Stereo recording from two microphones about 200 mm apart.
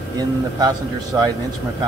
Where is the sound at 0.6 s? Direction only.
20° right (ahead or behind).